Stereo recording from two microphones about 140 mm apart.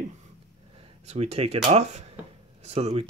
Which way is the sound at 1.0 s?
50° right (ahead or behind).